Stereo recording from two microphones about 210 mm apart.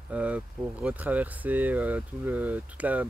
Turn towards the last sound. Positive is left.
turn(degrees=-5)  # may be behind; listen again after turning